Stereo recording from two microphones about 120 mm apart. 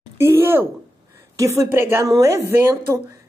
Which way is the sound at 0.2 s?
20° right (ahead or behind).